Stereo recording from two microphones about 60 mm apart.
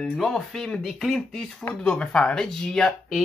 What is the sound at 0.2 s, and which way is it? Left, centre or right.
Speech, centre.